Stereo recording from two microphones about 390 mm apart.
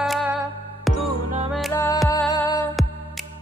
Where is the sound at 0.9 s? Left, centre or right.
Centre.